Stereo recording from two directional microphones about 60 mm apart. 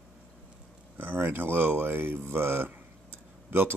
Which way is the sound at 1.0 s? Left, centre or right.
Right.